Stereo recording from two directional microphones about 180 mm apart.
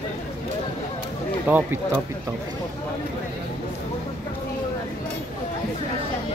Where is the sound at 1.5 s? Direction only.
10° right (ahead or behind).